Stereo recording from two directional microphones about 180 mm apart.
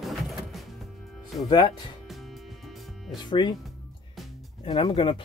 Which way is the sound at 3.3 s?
25° left (ahead or behind).